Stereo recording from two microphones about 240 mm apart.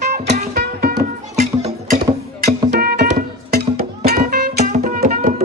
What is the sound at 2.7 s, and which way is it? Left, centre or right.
Music, right.